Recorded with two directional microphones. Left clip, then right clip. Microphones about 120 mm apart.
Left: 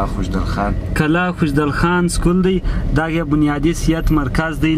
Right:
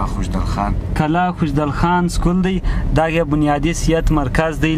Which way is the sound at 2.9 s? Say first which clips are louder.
Right 2 dB; 10° right (ahead or behind).